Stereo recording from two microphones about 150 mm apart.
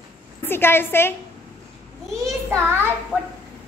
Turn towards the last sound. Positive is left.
turn(degrees=-5)  # may be behind; listen again after turning